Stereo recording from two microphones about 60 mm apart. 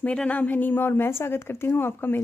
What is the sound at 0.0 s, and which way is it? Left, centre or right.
Speech, left.